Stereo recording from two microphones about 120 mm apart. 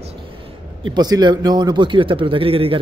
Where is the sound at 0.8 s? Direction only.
35° right (ahead or behind).